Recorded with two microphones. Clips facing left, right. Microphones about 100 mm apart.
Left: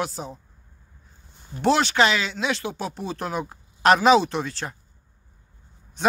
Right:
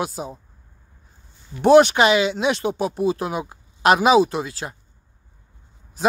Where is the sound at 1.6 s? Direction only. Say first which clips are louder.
Right 7 dB; 15° right (ahead or behind).